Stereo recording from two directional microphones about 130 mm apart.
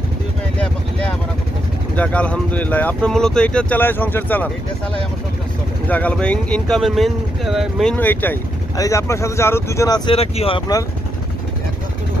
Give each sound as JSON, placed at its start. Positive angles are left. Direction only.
{"t": 0.6, "sound": "vehicle", "side_deg": 10}
{"t": 2.0, "sound": "speech", "side_deg": 10}
{"t": 5.9, "sound": "speech", "side_deg": 10}
{"t": 7.9, "sound": "speech", "side_deg": 15}
{"t": 10.1, "sound": "speech", "side_deg": 50}